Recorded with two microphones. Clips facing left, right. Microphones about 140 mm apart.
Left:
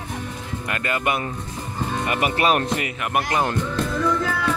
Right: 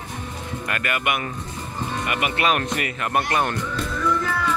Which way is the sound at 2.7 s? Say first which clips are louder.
Even; 15° left (ahead or behind).